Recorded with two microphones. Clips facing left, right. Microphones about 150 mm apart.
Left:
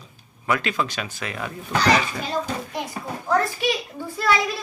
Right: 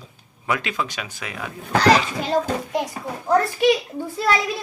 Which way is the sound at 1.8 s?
90° right.